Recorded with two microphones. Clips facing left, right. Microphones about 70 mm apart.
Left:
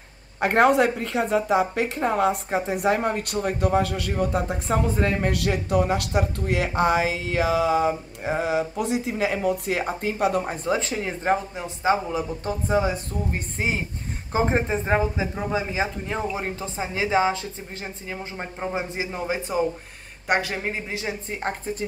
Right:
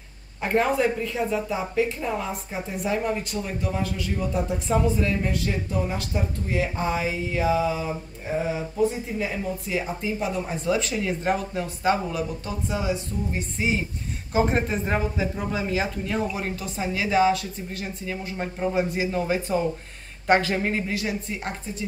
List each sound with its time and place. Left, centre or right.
0.4 s speech: left
5.3 s speech: left
10.4 s speech: left
12.4 s speech: left
14.3 s speech: left; by 20.8 s centre
20.9 s speech: left